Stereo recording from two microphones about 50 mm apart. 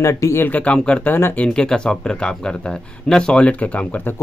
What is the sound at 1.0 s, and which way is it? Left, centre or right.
Speech, left.